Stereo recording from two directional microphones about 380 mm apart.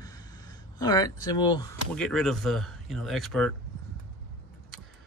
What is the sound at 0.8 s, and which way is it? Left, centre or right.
Speech, centre.